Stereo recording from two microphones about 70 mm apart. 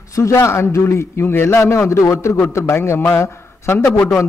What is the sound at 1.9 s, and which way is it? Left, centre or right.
A man's voice, left.